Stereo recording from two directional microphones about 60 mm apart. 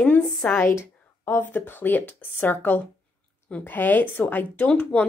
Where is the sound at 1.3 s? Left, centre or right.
Left.